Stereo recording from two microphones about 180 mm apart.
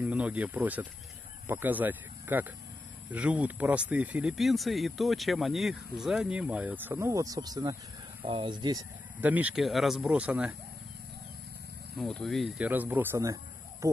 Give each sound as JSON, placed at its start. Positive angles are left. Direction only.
{"t": 0.0, "sound": "speech", "side_deg": -10}
{"t": 9.2, "sound": "speech", "side_deg": -10}
{"t": 12.0, "sound": "speech", "side_deg": 0}